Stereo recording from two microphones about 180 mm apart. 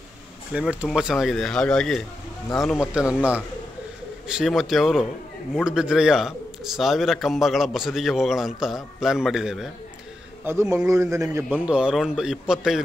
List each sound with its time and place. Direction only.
0.5 s a man's voice: 5° right (ahead or behind)
4.3 s a man's voice: centre (ahead or behind)
10.4 s a man's voice: 15° right (ahead or behind)